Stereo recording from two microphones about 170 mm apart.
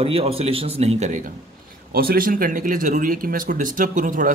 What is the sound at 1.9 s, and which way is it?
A man's voice, 60° right (ahead or behind).